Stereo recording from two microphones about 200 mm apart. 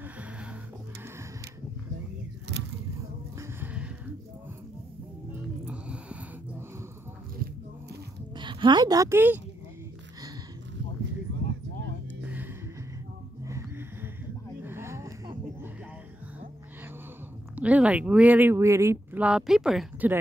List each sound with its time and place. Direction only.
3.3 s music: 10° right (ahead or behind)
5.7 s music: 5° right (ahead or behind)
8.4 s a woman's voice: 25° right (ahead or behind)
12.2 s music: 10° right (ahead or behind)
14.6 s a sound: 10° right (ahead or behind)
17.6 s speech: 5° right (ahead or behind)